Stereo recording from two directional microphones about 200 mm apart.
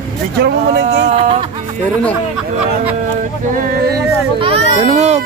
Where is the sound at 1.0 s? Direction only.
30° right (ahead or behind).